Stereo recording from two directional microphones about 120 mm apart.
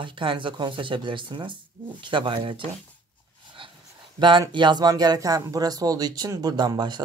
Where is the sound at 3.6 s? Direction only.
45° right (ahead or behind).